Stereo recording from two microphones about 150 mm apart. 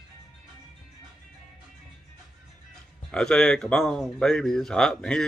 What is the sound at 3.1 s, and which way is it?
Speech, 5° left (ahead or behind).